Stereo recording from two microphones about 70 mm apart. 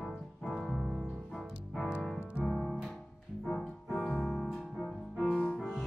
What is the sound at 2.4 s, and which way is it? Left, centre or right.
Music, centre.